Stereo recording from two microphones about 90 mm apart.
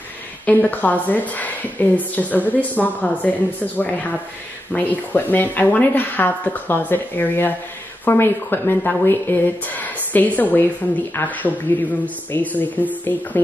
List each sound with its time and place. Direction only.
0.5 s speech: 20° left (ahead or behind)